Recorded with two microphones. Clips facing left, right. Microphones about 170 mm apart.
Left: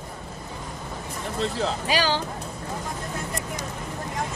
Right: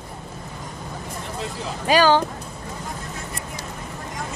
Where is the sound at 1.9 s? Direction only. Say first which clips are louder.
Right 10 dB; 50° right (ahead or behind).